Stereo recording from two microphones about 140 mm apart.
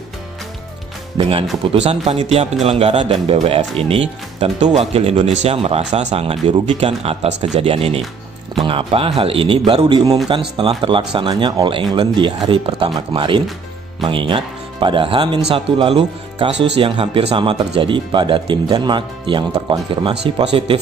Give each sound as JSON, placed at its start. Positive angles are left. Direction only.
{"t": 1.6, "sound": "speech", "side_deg": -45}